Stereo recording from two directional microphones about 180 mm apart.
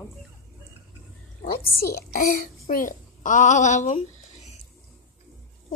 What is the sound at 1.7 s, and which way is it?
A child's voice, 60° left (ahead or behind).